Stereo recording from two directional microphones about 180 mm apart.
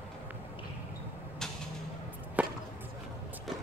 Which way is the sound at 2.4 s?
10° right (ahead or behind).